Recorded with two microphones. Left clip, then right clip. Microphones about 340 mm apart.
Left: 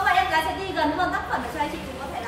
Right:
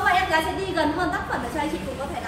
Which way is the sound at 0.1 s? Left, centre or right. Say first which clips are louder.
Even; centre.